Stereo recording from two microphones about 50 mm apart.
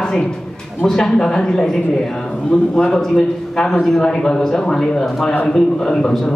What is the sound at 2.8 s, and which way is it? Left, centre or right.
A man's voice, centre.